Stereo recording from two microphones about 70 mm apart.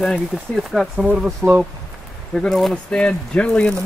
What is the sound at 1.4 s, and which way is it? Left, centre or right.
Speech, right.